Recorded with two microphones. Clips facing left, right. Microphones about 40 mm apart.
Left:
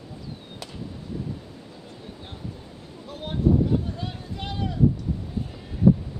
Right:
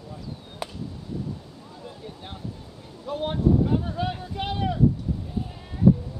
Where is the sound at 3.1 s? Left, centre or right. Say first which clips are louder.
Right 1 dB; right.